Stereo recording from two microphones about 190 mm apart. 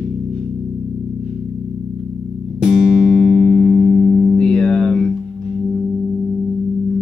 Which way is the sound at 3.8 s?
50° right (ahead or behind).